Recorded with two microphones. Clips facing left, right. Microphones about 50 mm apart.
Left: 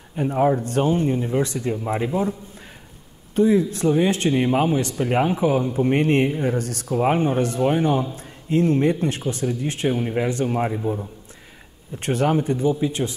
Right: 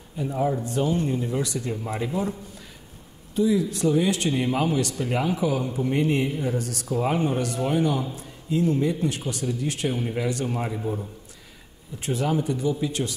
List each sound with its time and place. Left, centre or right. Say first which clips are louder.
0.1 s a man's voice: left 6 dB; left
0.9 s speech: left 4 dB; left
3.3 s speech: left 4 dB; left
6.9 s speech: left 4 dB; left
8.2 s a man's voice: left 4 dB; left
9.3 s speech: left 3 dB; left
12.0 s a man's voice: left 5 dB; left
12.6 s speech: left 4 dB; left